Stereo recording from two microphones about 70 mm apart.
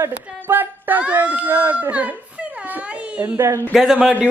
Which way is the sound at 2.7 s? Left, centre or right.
Centre.